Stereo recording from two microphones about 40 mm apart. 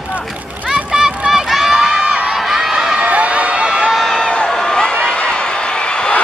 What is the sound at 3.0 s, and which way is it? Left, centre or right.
Crowd, right.